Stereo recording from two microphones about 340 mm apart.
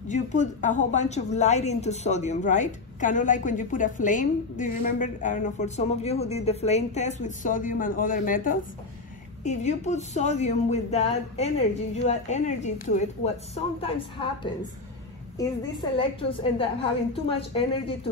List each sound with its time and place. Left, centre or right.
0.1 s a woman's voice: left
15.3 s a woman's voice: centre